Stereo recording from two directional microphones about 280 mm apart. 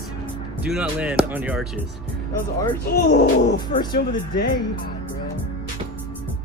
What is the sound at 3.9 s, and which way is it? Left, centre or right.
Speech, left.